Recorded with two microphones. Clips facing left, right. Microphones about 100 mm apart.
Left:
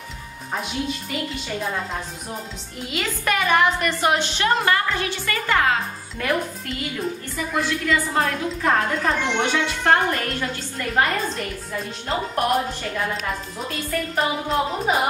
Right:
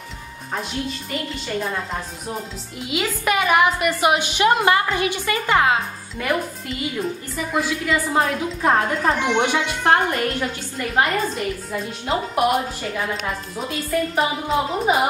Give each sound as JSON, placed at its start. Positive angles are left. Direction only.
{"t": 0.5, "sound": "a woman's voice", "side_deg": 0}
{"t": 6.1, "sound": "a woman's voice", "side_deg": -5}